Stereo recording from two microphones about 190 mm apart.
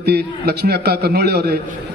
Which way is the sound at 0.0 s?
60° right (ahead or behind).